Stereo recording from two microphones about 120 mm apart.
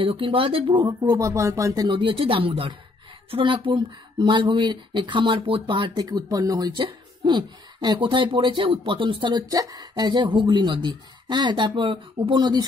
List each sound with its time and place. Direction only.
0.0 s speech: 50° right (ahead or behind)
0.8 s speech: 30° right (ahead or behind)
1.9 s speech: 45° right (ahead or behind)